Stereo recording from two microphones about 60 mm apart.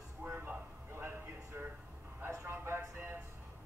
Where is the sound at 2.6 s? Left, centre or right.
Right.